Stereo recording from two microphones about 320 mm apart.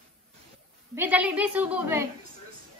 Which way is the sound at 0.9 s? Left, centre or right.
Centre.